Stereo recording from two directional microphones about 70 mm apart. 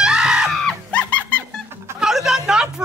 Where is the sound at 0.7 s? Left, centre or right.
Centre.